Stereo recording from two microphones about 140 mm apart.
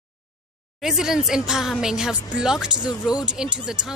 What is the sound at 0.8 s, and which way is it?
A woman's voice, 5° right (ahead or behind).